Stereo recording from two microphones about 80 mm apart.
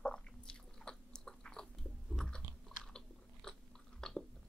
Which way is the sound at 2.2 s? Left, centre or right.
Centre.